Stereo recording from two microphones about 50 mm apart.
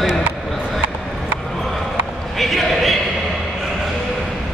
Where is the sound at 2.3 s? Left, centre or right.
Centre.